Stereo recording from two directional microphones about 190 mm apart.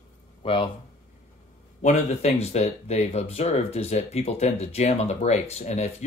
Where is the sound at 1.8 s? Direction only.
35° left (ahead or behind).